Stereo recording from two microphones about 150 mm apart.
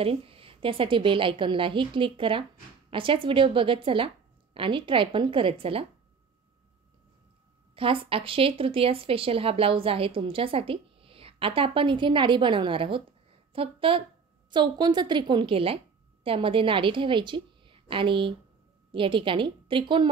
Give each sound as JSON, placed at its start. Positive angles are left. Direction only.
{"t": 0.0, "sound": "a woman's voice", "side_deg": -40}
{"t": 7.7, "sound": "a woman's voice", "side_deg": -35}